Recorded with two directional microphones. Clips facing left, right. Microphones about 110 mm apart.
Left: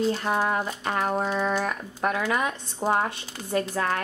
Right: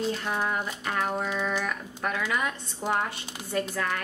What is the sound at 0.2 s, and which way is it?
Speech, 30° left (ahead or behind).